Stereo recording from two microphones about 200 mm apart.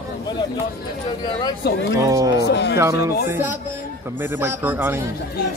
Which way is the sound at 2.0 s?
15° right (ahead or behind).